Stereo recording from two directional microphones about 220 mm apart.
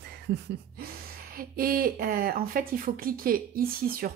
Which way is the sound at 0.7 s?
45° right (ahead or behind).